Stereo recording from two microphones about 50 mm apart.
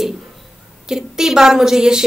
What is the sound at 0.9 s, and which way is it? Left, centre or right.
A woman's voice, centre.